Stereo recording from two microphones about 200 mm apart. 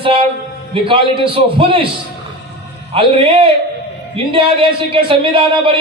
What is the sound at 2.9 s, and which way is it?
Speech, 25° right (ahead or behind).